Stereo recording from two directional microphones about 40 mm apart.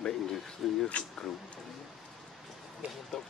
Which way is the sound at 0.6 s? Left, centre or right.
Centre.